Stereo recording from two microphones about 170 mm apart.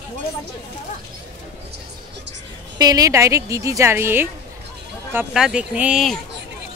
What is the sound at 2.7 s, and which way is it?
A woman's voice, 20° right (ahead or behind).